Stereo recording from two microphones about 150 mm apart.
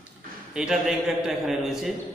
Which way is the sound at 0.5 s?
5° right (ahead or behind).